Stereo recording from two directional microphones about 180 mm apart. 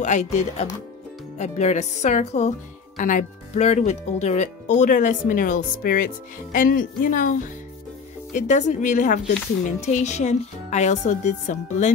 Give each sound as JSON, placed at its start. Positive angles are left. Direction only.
{"t": 0.0, "sound": "speech", "side_deg": 40}